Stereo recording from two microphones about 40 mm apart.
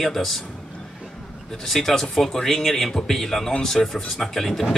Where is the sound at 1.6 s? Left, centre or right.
Centre.